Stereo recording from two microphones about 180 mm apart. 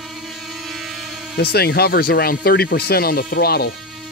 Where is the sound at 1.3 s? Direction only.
60° left (ahead or behind).